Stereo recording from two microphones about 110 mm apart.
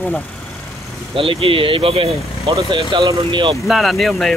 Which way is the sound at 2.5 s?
45° right (ahead or behind).